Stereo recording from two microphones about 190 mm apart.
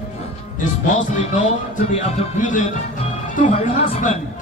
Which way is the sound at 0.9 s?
40° left (ahead or behind).